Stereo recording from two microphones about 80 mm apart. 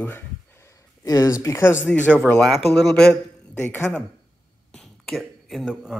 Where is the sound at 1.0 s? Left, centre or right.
Left.